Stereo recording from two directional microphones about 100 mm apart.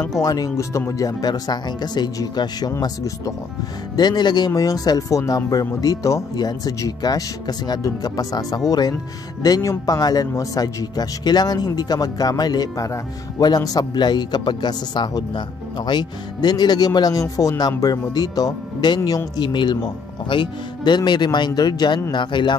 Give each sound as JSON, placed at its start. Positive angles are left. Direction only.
{"t": 0.2, "sound": "speech", "side_deg": 35}
{"t": 4.5, "sound": "speech", "side_deg": 35}